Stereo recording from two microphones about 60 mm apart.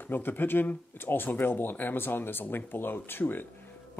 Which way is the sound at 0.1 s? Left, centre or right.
Left.